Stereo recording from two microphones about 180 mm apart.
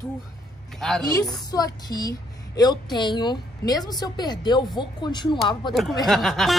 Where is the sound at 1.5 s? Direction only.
20° left (ahead or behind).